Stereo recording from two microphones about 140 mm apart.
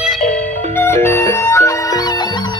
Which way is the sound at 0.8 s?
20° left (ahead or behind).